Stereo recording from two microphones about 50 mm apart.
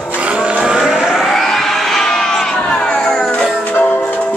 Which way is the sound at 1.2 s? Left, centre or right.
Centre.